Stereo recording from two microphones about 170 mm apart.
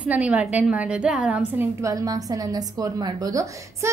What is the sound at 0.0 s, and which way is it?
A woman's voice, 10° right (ahead or behind).